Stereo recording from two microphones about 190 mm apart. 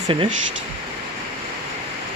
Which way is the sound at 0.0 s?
25° right (ahead or behind).